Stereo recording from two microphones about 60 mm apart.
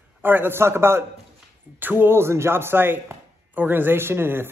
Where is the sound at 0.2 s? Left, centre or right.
Right.